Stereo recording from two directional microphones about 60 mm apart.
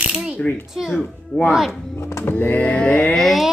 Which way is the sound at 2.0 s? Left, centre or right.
Left.